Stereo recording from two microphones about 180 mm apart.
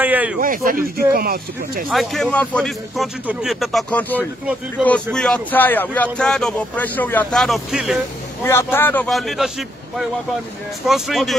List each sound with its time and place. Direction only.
0.0 s a sound: 10° right (ahead or behind)
0.4 s speech: 50° right (ahead or behind)
1.9 s speech: centre (ahead or behind)
8.5 s speech: 15° left (ahead or behind)